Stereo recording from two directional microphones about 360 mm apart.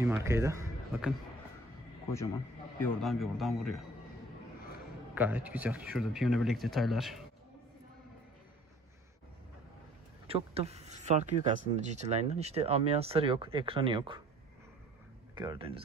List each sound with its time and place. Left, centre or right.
0.0 s speech: centre
3.0 s speech: centre
5.1 s a man's voice: centre
10.2 s speech: centre
15.3 s speech: centre